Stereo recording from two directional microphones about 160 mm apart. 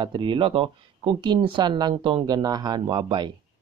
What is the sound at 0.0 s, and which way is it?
Speech, 30° right (ahead or behind).